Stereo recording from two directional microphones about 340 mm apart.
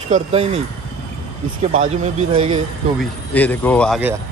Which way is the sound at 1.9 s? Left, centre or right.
Centre.